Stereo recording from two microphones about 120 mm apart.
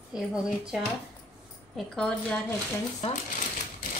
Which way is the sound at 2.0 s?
5° left (ahead or behind).